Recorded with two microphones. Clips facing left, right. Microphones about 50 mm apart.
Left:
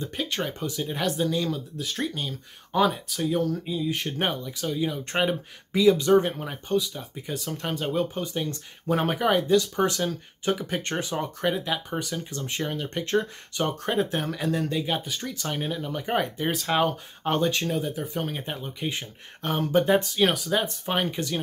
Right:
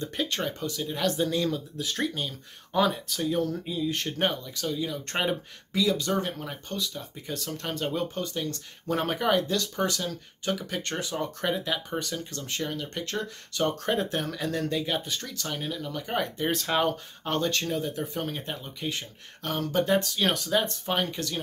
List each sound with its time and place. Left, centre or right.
0.0 s speech: centre
1.1 s speech: centre; by 11.2 s left
11.4 s speech: centre; by 13.7 s left
13.7 s speech: centre
18.3 s speech: centre
20.2 s speech: centre